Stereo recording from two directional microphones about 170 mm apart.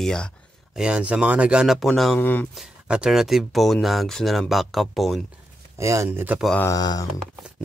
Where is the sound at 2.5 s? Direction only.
5° right (ahead or behind).